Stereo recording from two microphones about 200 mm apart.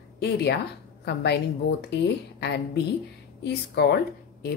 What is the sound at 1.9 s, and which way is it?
Speech, 55° left (ahead or behind).